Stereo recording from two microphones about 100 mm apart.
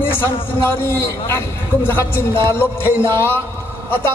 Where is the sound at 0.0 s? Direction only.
20° left (ahead or behind).